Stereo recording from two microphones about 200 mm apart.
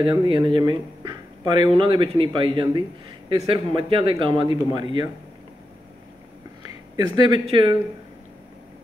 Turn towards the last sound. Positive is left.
turn(degrees=-25)  # may be behind; listen again after turning